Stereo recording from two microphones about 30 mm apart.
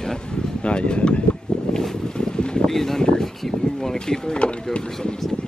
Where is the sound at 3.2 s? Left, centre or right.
Centre.